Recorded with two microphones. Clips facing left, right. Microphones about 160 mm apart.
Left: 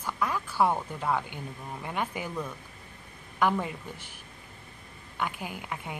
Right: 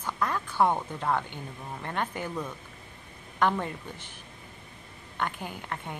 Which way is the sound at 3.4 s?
10° left (ahead or behind).